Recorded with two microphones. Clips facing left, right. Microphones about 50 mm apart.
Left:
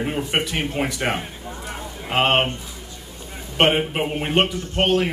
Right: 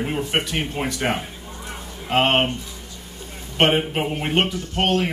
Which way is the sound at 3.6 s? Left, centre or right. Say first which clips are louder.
Even; centre.